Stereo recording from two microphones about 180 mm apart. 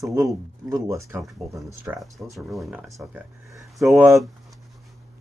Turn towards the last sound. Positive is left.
turn(degrees=0)  # may be behind; listen again after turning